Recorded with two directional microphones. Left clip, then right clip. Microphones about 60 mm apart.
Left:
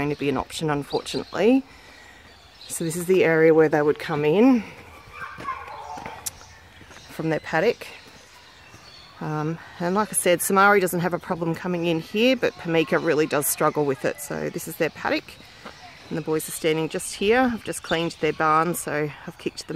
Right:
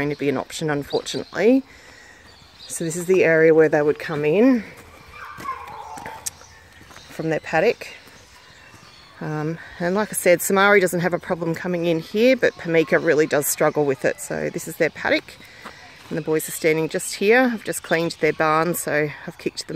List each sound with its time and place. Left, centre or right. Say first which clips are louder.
0.0 s speech: right 2 dB; right
2.7 s speech: right 2 dB; centre
7.2 s speech: right 3 dB; centre
9.2 s speech: right 1 dB; right
16.2 s speech: right 3 dB; right